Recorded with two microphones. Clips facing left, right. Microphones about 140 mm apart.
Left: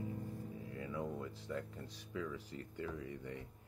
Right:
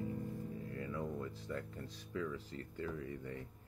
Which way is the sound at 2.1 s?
15° left (ahead or behind).